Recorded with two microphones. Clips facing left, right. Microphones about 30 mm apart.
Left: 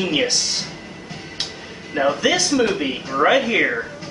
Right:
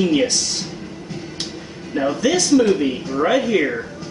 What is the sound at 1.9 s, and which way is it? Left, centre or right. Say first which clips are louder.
Speech: even; centre.